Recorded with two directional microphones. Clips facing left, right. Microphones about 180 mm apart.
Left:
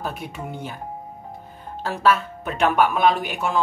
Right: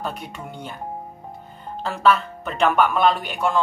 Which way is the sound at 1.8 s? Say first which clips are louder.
Right 1 dB; 5° left (ahead or behind).